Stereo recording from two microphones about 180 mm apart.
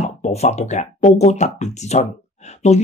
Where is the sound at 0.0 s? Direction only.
40° left (ahead or behind).